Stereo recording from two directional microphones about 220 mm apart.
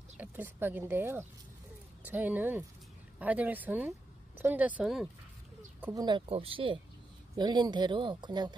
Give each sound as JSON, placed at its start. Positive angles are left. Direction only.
{"t": 0.2, "sound": "speech", "side_deg": -10}
{"t": 6.0, "sound": "speech", "side_deg": -25}